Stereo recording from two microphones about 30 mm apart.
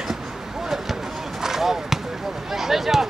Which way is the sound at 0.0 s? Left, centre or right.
Centre.